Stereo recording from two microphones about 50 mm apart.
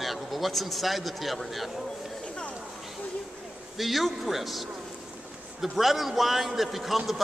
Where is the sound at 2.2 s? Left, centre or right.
Left.